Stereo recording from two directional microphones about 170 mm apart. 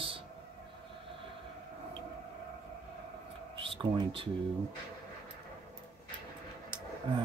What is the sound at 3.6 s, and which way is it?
Speech, 30° right (ahead or behind).